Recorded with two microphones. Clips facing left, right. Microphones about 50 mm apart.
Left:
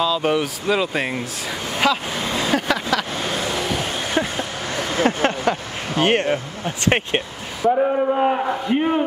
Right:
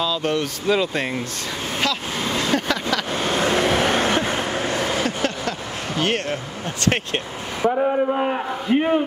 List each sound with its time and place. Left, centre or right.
0.0 s speech: centre
2.1 s vehicle: left
2.5 s vehicle: centre
3.3 s vehicle: right
4.2 s a sound: right
4.9 s speech: left
5.4 s speech: centre
7.7 s a man's voice: centre